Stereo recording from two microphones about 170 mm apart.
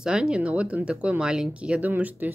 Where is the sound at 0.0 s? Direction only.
5° right (ahead or behind).